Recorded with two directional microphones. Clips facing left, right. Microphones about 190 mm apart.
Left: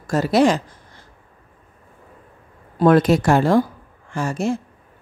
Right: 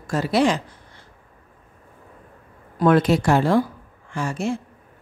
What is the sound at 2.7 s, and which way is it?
A woman's voice, 40° left (ahead or behind).